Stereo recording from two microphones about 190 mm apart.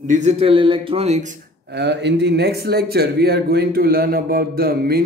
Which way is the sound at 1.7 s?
60° right (ahead or behind).